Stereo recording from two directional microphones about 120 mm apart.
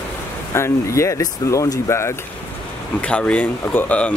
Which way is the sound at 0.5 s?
25° left (ahead or behind).